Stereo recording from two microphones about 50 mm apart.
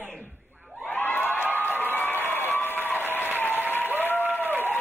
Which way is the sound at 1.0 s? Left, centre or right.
Left.